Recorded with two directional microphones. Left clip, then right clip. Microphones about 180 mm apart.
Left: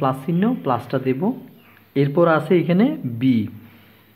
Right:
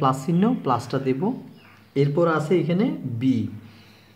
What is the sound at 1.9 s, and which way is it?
Speech, 20° left (ahead or behind).